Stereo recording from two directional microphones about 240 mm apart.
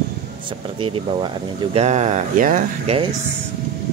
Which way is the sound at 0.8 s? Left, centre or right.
Right.